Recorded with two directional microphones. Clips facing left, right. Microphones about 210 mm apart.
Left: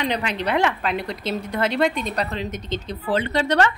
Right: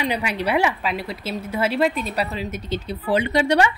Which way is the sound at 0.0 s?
10° right (ahead or behind).